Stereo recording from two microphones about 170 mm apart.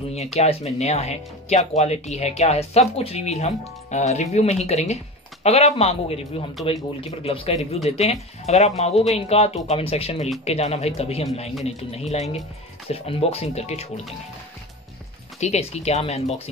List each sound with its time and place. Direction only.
0.1 s speech: 40° left (ahead or behind)
15.4 s speech: 40° left (ahead or behind)